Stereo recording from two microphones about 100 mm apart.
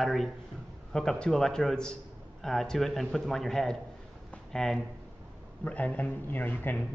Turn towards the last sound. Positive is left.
turn(degrees=20)  # may be behind; listen again after turning